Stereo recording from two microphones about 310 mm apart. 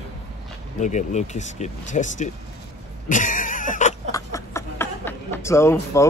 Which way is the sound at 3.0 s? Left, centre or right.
Left.